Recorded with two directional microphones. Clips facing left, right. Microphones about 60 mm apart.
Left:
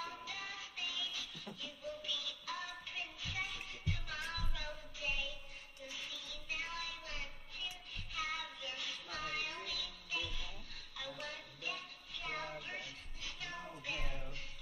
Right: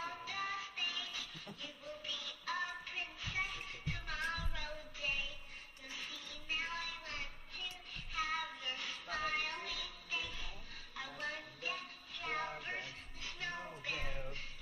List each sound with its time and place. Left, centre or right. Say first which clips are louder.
0.0 s music: right 3 dB; right